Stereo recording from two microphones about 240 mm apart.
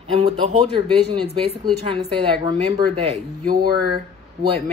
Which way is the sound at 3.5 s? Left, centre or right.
Right.